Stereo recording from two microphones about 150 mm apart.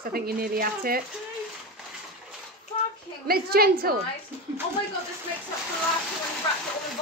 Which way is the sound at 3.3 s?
90° right.